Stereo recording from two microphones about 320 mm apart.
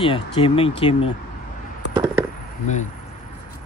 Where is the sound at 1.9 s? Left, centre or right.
Centre.